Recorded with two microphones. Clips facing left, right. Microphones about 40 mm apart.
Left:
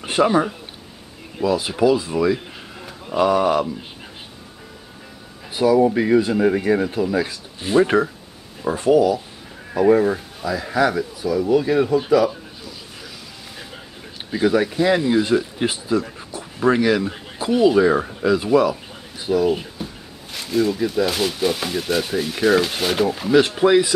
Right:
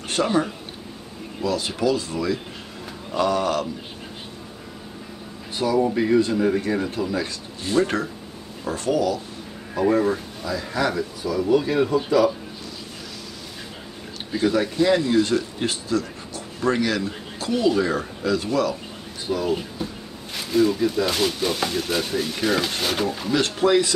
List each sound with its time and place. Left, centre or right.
0.0 s a man's voice: centre
5.8 s speech: centre
14.3 s speech: centre
19.2 s speech: centre